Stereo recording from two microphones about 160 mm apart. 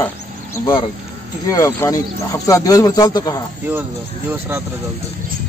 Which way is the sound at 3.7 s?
10° right (ahead or behind).